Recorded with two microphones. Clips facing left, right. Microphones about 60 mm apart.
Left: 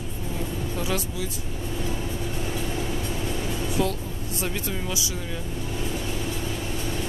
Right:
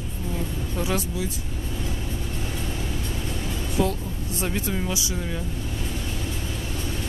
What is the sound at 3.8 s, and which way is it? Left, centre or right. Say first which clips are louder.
Vehicle: right 4 dB; right.